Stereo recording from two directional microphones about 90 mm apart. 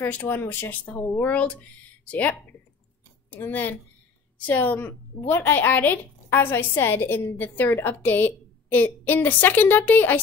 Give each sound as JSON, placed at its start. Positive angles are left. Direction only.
{"t": 0.0, "sound": "a woman's voice", "side_deg": 20}
{"t": 3.3, "sound": "a woman's voice", "side_deg": 20}